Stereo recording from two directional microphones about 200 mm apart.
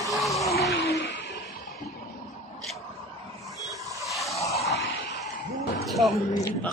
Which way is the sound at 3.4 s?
Centre (ahead or behind).